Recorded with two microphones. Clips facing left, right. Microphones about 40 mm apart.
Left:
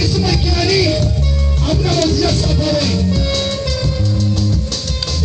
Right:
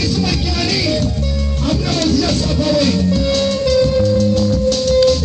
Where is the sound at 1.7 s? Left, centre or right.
Right.